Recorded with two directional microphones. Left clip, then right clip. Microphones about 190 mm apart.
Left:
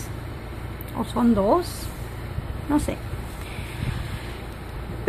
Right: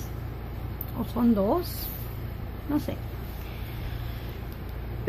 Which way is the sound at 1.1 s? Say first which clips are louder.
Left 5 dB; 10° left (ahead or behind).